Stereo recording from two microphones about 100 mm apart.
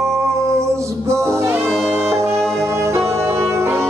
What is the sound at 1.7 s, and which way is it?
Music, 5° left (ahead or behind).